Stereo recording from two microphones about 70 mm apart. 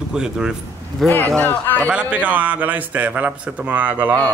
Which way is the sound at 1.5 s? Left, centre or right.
Left.